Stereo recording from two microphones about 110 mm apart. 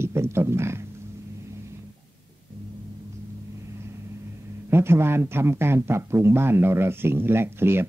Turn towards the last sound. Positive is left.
turn(degrees=-20)  # may be behind; listen again after turning